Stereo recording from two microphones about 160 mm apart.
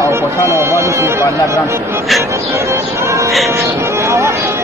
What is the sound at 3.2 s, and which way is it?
Speech, centre (ahead or behind).